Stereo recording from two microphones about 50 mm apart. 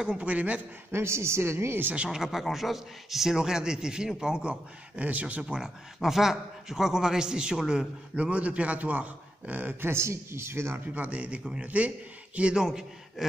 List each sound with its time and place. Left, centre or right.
0.0 s speech: right
0.9 s a woman's voice: right
2.0 s a man's voice: centre; by 5.4 s right
5.4 s a man's voice: centre
8.2 s a man's voice: right
10.7 s a man's voice: right
13.2 s a sound: centre